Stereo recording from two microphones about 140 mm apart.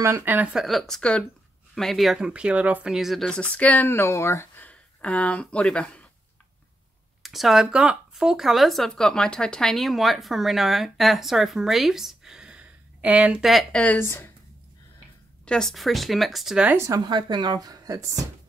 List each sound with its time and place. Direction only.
0.0 s speech: 15° right (ahead or behind); by 6.0 s 5° left (ahead or behind)
7.2 s speech: centre (ahead or behind); by 14.3 s 15° left (ahead or behind)
15.4 s speech: 5° left (ahead or behind)
16.7 s speech: 20° right (ahead or behind)
17.0 s speech: 35° right (ahead or behind)